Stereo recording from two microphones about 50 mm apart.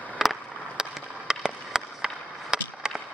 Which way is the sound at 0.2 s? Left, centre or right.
Centre.